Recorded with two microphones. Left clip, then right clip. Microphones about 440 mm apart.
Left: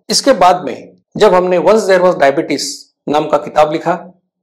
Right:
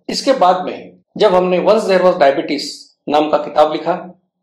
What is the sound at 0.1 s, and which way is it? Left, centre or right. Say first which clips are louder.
Speech: left 3 dB; left.